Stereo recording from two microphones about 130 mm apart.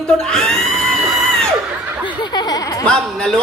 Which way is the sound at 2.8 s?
5° left (ahead or behind).